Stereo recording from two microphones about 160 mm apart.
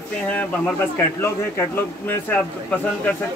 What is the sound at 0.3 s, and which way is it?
A man's voice, 10° left (ahead or behind).